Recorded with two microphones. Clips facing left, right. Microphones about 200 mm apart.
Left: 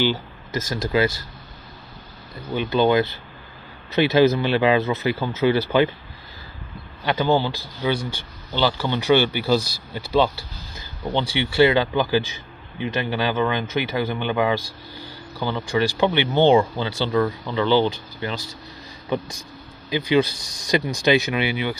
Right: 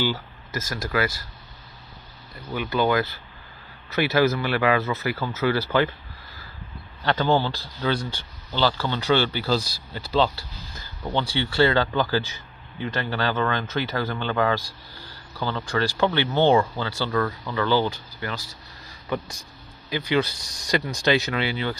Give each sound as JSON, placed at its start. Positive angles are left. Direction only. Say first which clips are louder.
{"t": 0.0, "sound": "speech", "louder": "left 4 dB", "side_deg": 20}
{"t": 2.5, "sound": "speech", "louder": "left 4 dB", "side_deg": 25}
{"t": 7.1, "sound": "speech", "louder": "left 2 dB", "side_deg": 15}